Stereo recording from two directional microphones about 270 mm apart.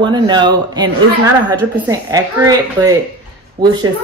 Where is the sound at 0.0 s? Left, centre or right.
Centre.